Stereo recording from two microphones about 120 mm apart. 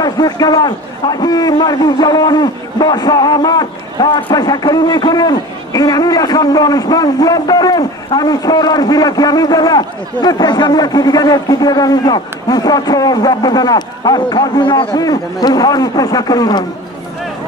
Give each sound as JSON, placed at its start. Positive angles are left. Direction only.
{"t": 0.0, "sound": "a man's voice", "side_deg": 35}